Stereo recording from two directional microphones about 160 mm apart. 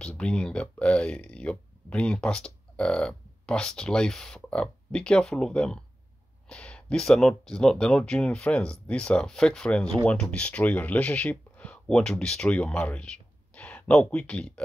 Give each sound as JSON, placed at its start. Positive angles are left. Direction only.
{"t": 0.0, "sound": "speech", "side_deg": 5}